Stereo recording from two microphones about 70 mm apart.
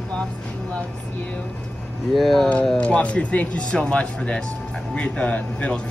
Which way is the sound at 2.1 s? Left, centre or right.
Centre.